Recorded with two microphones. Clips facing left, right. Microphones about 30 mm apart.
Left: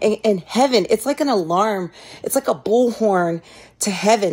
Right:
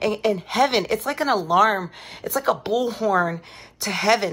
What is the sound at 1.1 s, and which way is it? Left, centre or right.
Speech, right.